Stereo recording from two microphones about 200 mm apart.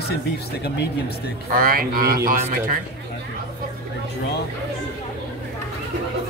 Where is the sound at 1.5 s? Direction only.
45° right (ahead or behind).